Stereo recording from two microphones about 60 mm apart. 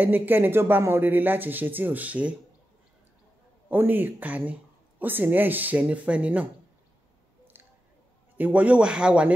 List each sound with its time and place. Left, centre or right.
0.0 s speech: right
3.6 s speech: right
7.5 s squish: right
8.4 s speech: right